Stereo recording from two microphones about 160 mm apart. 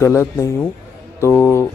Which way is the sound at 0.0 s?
15° left (ahead or behind).